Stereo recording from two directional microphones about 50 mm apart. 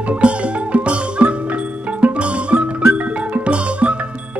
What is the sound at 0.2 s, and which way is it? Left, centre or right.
Music, right.